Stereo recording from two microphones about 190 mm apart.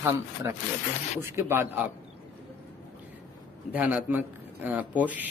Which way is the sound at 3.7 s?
5° right (ahead or behind).